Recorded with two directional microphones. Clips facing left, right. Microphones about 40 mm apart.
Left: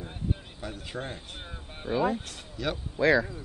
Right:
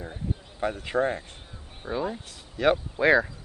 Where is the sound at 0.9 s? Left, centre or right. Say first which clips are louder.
Right 13 dB; right.